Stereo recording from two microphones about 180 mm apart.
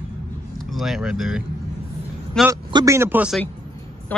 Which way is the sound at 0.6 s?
Centre (ahead or behind).